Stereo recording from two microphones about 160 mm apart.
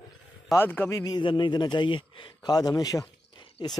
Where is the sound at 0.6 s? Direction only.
10° left (ahead or behind).